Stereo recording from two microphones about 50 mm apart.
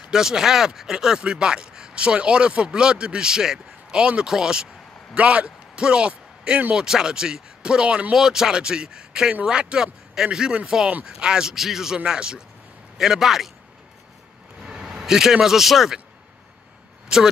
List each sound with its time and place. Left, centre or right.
0.1 s speech: centre
5.1 s speech: right; by 13.5 s centre
14.6 s speech: centre